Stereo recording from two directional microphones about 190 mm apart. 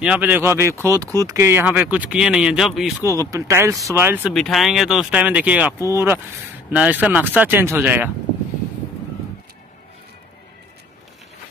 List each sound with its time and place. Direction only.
0.0 s speech: 5° right (ahead or behind)
3.1 s speech: 15° right (ahead or behind)
4.3 s speech: centre (ahead or behind)